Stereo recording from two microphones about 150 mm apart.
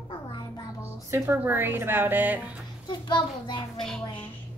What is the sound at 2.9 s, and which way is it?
Speech, 30° left (ahead or behind).